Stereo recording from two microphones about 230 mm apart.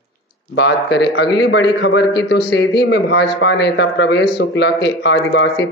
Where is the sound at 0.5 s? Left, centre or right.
Left.